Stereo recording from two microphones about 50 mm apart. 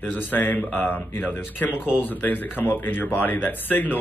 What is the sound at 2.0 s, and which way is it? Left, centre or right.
A man's voice, left.